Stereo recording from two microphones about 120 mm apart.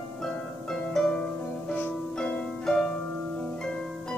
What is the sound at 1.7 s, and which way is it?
Music, 15° left (ahead or behind).